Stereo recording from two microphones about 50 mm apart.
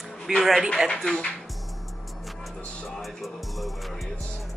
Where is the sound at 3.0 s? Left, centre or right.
Centre.